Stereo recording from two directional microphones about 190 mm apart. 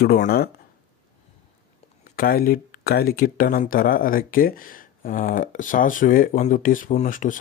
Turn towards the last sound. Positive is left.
turn(degrees=45)  # may be behind; listen again after turning